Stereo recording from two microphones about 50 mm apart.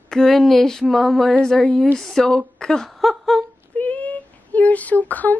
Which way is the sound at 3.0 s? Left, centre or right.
Centre.